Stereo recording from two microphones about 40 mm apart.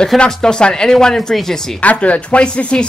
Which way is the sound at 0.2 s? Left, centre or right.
Left.